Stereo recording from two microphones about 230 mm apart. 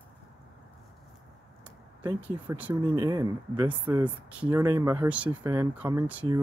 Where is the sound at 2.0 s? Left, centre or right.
Centre.